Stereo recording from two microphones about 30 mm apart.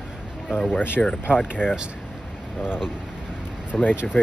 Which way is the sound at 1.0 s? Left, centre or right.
Left.